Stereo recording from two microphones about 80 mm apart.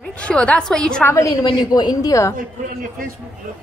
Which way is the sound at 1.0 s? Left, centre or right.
Left.